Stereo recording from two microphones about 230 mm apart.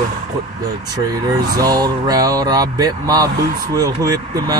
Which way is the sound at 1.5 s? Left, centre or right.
Centre.